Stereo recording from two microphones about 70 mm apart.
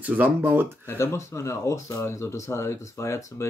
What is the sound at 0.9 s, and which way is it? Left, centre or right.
Speech, left.